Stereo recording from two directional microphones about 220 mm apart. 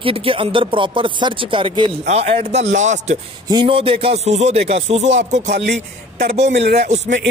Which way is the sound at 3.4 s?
20° right (ahead or behind).